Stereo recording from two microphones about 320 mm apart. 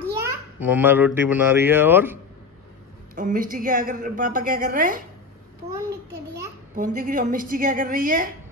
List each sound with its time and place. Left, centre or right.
0.2 s a child's voice: centre
3.2 s a woman's voice: right
6.7 s a woman's voice: right